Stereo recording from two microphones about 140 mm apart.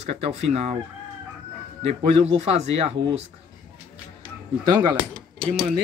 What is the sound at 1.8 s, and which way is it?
Speech, 45° right (ahead or behind).